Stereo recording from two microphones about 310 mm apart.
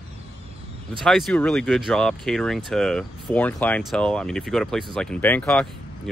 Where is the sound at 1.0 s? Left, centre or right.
Centre.